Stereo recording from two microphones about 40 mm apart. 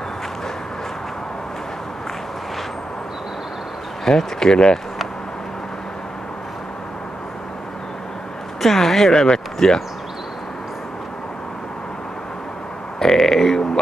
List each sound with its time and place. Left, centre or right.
4.1 s speech: centre
8.6 s speech: centre
13.0 s a sound: centre